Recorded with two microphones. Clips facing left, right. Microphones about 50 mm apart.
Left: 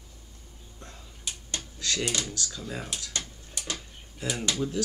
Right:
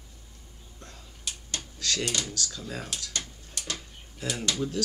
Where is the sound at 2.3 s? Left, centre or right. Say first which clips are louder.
Even; centre.